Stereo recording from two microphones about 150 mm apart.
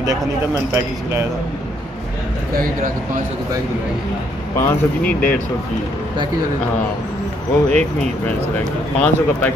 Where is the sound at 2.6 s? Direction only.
65° right (ahead or behind).